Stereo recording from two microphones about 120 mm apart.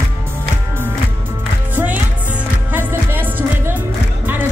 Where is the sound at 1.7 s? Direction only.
15° right (ahead or behind).